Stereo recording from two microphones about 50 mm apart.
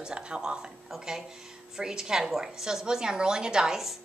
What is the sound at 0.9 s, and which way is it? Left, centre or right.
A woman's voice, centre.